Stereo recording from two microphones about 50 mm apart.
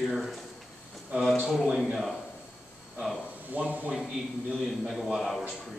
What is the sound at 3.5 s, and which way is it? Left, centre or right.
Speech, right.